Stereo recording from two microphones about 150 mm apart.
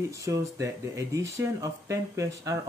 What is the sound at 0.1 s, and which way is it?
Speech, 20° right (ahead or behind).